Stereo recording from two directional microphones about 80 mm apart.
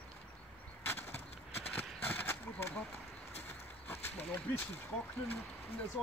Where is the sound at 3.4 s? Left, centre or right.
Left.